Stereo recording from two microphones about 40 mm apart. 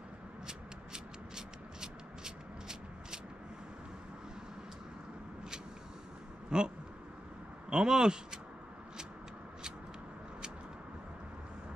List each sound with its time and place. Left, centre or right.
0.5 s a sound: centre
6.5 s speech: right
7.7 s speech: centre